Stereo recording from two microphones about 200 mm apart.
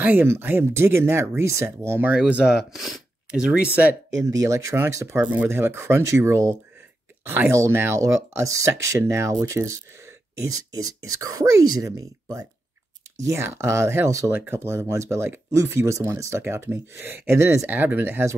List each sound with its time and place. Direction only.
0.0 s speech: 10° right (ahead or behind)
11.0 s speech: 15° right (ahead or behind)